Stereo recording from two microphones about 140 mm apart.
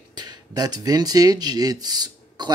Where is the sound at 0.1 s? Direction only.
30° right (ahead or behind).